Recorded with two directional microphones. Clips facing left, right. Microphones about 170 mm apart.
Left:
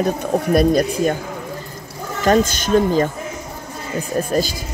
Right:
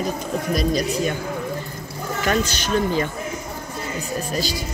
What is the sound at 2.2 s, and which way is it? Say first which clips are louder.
Speech: left 7 dB; 45° left (ahead or behind).